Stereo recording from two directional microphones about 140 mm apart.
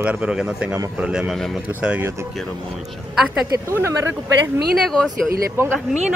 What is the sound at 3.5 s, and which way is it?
Speech, 20° right (ahead or behind).